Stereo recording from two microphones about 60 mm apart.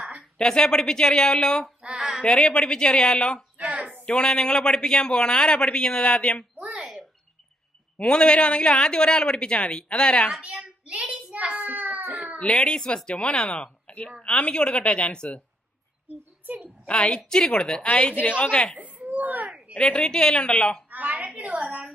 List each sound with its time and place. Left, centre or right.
0.4 s a man's voice: centre
1.8 s a sound: centre
2.2 s a man's voice: centre
3.7 s a sound: right
4.0 s a man's voice: centre
6.6 s a sound: centre
8.0 s a man's voice: centre
10.4 s child singing: centre
12.4 s a man's voice: centre
16.8 s a woman's voice: centre
18.8 s a sound: right
19.8 s a man's voice: centre
21.4 s a woman's voice: right